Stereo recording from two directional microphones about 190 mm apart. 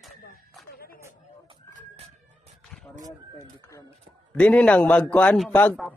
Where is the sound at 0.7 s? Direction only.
50° left (ahead or behind).